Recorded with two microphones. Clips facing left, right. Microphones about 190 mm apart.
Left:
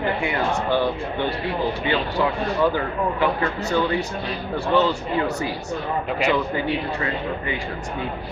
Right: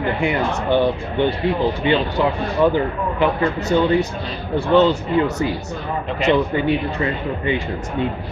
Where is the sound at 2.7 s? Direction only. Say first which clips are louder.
Right 3 dB; 20° right (ahead or behind).